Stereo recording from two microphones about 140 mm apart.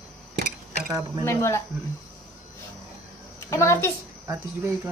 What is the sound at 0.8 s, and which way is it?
Speech, 25° right (ahead or behind).